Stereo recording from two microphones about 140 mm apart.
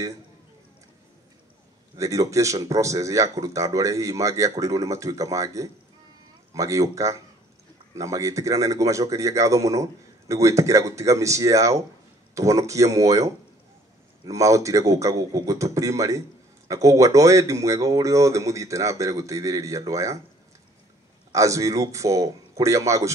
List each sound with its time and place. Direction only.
2.0 s a man's voice: 25° right (ahead or behind)
21.3 s a man's voice: 20° right (ahead or behind)